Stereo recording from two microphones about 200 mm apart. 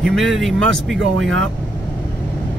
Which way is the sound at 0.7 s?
70° right (ahead or behind).